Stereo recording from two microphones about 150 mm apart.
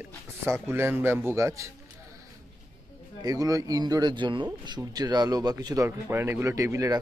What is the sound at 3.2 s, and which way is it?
A man's voice, 25° right (ahead or behind).